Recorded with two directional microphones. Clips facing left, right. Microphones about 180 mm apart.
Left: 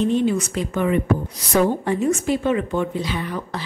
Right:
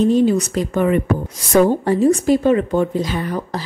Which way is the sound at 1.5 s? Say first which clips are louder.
Right 5 dB; 35° right (ahead or behind).